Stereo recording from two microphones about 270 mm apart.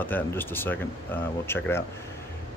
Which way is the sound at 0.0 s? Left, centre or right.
Centre.